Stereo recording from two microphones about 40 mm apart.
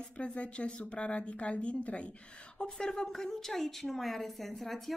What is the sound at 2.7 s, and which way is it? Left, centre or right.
A woman's voice, centre.